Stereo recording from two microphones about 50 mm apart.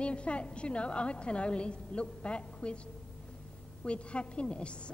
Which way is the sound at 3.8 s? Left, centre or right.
Left.